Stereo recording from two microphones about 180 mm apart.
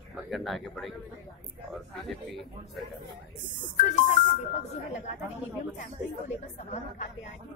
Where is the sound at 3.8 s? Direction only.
40° left (ahead or behind).